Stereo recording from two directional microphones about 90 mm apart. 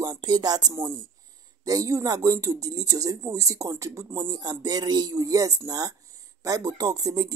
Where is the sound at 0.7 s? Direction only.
30° right (ahead or behind).